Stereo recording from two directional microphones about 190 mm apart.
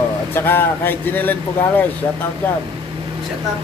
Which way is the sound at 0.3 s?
10° left (ahead or behind).